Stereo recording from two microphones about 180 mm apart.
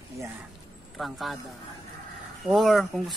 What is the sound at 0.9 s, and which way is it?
Speech, centre (ahead or behind).